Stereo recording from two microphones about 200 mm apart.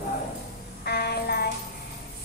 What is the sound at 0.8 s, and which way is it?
Speech, 55° left (ahead or behind).